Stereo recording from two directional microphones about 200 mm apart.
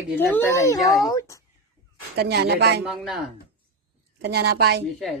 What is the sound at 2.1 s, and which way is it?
Speech, 55° right (ahead or behind).